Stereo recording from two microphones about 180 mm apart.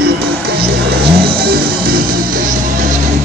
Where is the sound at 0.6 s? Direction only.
60° right (ahead or behind).